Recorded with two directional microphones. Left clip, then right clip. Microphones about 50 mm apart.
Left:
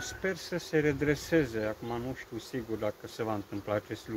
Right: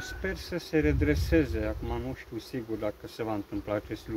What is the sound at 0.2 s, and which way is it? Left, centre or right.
Speech, right.